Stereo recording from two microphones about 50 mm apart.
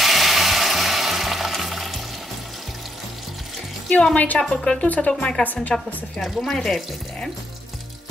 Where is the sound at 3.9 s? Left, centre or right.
Centre.